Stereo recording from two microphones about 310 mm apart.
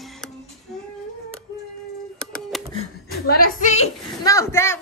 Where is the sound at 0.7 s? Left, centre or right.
Centre.